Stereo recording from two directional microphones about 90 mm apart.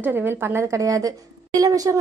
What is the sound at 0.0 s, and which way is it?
A woman's voice, 25° right (ahead or behind).